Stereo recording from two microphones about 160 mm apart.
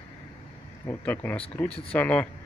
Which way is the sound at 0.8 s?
15° left (ahead or behind).